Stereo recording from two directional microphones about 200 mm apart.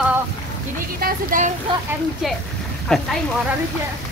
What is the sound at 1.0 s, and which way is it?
Speech, 40° right (ahead or behind).